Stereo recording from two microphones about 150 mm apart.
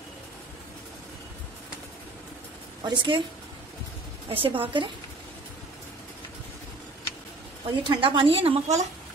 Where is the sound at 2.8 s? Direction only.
30° right (ahead or behind).